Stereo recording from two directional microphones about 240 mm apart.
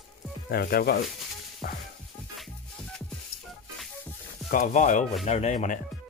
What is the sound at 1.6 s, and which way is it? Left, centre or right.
Music, left.